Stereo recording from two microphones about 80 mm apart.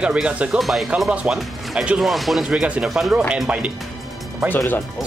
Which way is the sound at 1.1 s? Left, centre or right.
Centre.